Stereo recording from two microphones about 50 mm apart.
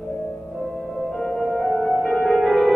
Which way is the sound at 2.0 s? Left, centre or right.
Left.